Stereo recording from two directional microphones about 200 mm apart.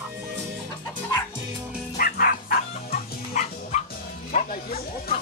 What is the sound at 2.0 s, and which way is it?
Music, 45° left (ahead or behind).